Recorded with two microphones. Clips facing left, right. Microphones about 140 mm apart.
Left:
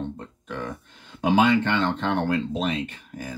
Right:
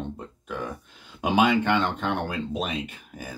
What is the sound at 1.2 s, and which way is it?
Speech, 10° right (ahead or behind).